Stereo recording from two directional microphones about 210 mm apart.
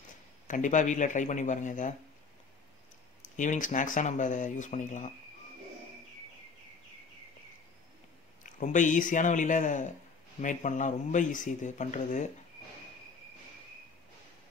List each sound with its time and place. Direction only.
0.5 s speech: 35° left (ahead or behind)
3.3 s speech: 40° left (ahead or behind)
8.5 s speech: 35° left (ahead or behind)